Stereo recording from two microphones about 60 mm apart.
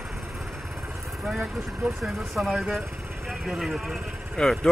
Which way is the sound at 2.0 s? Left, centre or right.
Centre.